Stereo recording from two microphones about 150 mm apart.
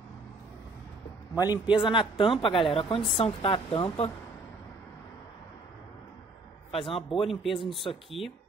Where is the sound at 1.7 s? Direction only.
35° left (ahead or behind).